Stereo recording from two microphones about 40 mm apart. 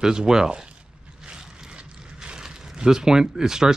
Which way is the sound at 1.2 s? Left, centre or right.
Right.